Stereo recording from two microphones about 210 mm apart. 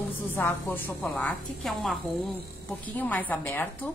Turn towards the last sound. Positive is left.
turn(degrees=10)  # may be behind; listen again after turning